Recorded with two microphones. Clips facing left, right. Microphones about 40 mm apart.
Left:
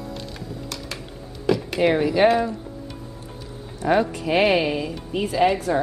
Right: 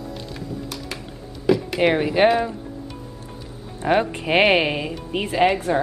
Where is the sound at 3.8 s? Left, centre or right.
Right.